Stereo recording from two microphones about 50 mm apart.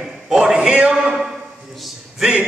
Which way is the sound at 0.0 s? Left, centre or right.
Centre.